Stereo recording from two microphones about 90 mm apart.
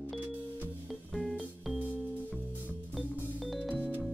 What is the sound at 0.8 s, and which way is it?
Music, centre (ahead or behind).